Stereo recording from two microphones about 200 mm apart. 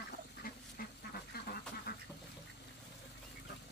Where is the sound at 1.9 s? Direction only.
50° left (ahead or behind).